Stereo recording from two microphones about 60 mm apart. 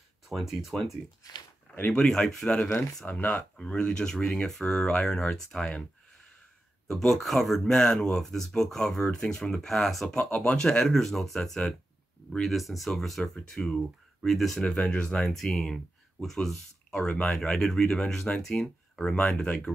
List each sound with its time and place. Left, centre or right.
0.3 s speech: centre
1.9 s speech: centre
3.1 s speech: left
3.5 s speech: centre
6.9 s speech: centre
10.1 s speech: centre
14.7 s speech: centre
15.3 s speech: centre